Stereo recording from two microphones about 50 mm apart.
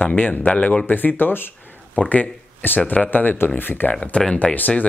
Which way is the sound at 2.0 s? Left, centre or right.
Left.